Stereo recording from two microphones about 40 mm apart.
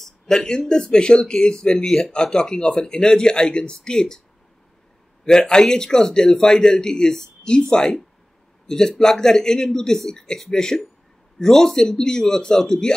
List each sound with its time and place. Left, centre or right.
0.0 s speech: centre
5.2 s a man's voice: centre